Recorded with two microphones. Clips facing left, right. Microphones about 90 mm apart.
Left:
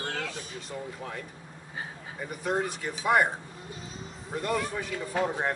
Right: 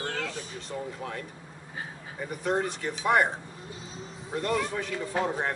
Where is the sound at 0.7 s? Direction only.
5° left (ahead or behind).